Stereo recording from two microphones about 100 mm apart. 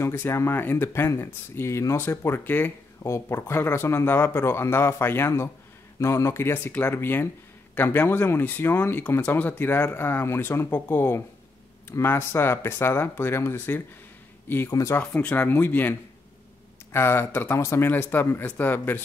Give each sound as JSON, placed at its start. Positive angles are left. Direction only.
{"t": 0.0, "sound": "speech", "side_deg": 25}
{"t": 14.7, "sound": "speech", "side_deg": 35}
{"t": 15.0, "sound": "speech", "side_deg": 15}